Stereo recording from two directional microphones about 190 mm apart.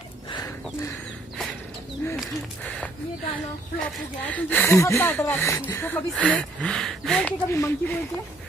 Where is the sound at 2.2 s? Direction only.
5° left (ahead or behind).